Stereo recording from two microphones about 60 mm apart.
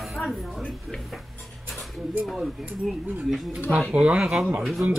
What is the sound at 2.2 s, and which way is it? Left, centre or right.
Speech, centre.